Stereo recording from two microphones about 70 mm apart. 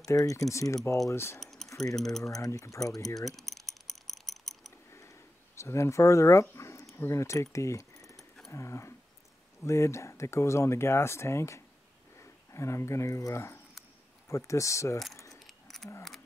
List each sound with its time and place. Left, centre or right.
0.0 s speech: left
1.1 s speech: left
1.4 s keys jangling: centre
2.0 s speech: centre
2.2 s speech: left
3.2 s typing: centre
5.6 s speech: left
6.4 s a sound: left
7.0 s speech: left
7.5 s keys jangling: left
8.5 s speech: left
15.3 s a sound: centre